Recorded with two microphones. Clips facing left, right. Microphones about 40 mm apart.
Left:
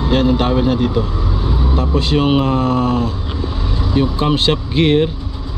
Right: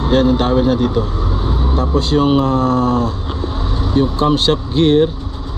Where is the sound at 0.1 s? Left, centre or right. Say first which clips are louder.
Right 2 dB; left.